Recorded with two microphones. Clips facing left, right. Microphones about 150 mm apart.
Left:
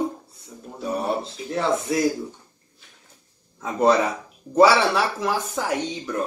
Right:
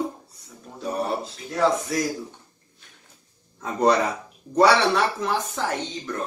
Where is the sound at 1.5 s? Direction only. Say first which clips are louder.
Right 1 dB; 25° left (ahead or behind).